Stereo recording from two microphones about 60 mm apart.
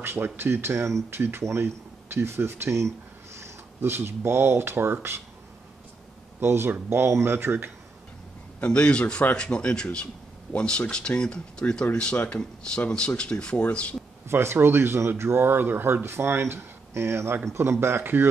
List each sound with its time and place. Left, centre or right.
0.0 s speech: right
6.4 s speech: right
8.5 s speech: centre
14.3 s speech: right